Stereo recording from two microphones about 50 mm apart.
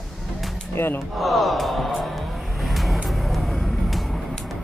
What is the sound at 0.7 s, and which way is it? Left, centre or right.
Speech, left.